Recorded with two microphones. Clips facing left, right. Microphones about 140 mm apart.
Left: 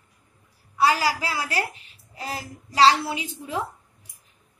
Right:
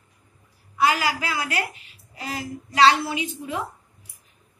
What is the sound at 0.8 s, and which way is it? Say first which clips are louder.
A woman's voice: left 1 dB; 35° left (ahead or behind).